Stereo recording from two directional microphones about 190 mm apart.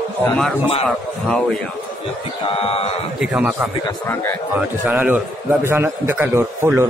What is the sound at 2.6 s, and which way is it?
Speech, 30° left (ahead or behind).